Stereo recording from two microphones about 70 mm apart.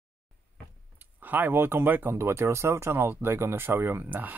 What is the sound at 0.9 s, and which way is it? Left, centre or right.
Speech, right.